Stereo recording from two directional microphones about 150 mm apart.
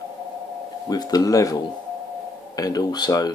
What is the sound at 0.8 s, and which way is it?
Speech, 25° left (ahead or behind).